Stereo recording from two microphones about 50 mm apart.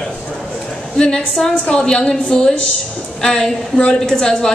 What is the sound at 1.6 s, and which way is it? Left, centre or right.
A woman's voice, centre.